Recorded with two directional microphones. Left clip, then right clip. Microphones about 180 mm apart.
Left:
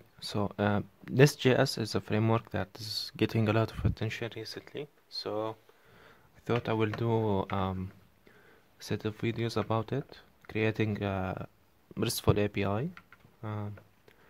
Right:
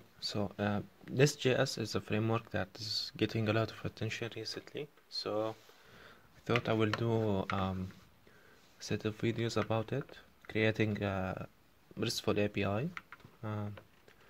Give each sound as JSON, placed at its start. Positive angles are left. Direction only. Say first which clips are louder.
{"t": 0.2, "sound": "speech", "louder": "left 5 dB", "side_deg": 25}
{"t": 5.9, "sound": "a sound", "louder": "left 1 dB", "side_deg": 15}
{"t": 7.0, "sound": "speech", "louder": "left 4 dB", "side_deg": 25}
{"t": 8.7, "sound": "speech", "louder": "left 2 dB", "side_deg": 20}